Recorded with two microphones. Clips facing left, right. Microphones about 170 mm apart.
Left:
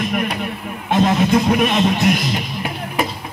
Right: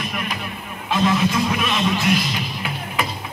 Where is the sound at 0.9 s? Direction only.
50° left (ahead or behind).